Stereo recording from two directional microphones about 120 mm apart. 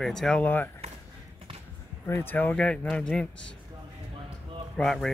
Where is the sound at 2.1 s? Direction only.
20° left (ahead or behind).